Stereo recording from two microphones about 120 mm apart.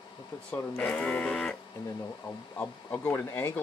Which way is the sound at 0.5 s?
15° left (ahead or behind).